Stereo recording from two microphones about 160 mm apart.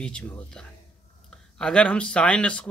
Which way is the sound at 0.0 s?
5° left (ahead or behind).